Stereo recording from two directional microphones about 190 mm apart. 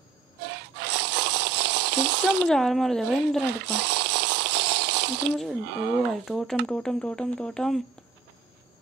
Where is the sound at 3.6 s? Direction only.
65° right (ahead or behind).